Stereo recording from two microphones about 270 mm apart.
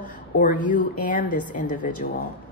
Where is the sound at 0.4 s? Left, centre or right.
Left.